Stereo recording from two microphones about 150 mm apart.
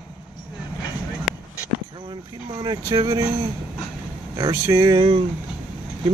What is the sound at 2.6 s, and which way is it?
Speech, 30° right (ahead or behind).